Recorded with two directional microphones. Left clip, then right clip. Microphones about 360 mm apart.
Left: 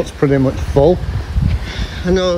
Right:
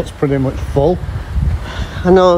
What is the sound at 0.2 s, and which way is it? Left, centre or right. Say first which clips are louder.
Speech: left 2 dB; left.